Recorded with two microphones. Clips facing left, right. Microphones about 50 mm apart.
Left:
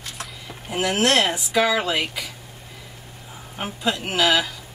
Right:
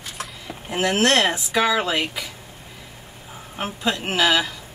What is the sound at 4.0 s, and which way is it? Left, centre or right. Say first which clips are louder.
Speech: even; right.